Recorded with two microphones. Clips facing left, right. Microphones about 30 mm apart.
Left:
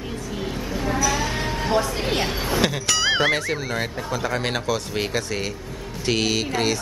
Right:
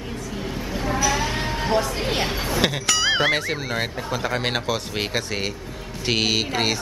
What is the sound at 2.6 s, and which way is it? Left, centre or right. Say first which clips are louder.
Speech: right 1 dB; centre.